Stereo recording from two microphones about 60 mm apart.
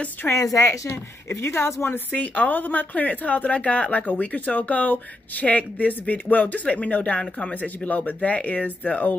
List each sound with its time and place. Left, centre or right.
0.4 s a woman's voice: left
0.7 s speech: left
2.1 s speech: left